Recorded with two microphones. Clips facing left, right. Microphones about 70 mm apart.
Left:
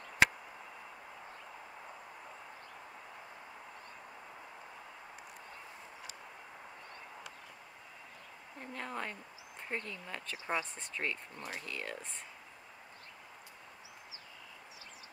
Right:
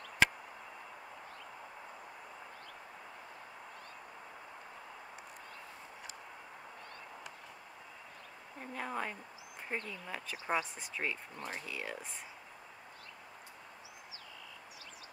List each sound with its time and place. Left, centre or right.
8.5 s speech: centre
11.3 s speech: right
11.6 s speech: centre